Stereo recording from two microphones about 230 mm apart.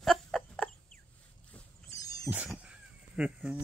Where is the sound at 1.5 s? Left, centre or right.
Centre.